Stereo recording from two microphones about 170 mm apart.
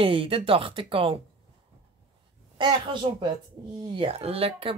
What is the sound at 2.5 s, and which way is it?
Speech, 30° right (ahead or behind).